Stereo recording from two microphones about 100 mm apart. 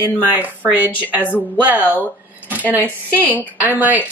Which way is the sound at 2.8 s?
15° left (ahead or behind).